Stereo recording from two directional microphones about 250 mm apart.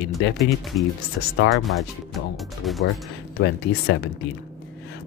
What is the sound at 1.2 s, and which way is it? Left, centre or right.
Speech, left.